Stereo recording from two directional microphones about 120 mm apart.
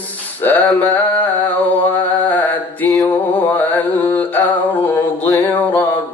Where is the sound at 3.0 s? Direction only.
15° left (ahead or behind).